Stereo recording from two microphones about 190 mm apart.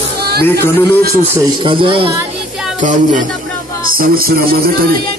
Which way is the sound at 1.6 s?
25° right (ahead or behind).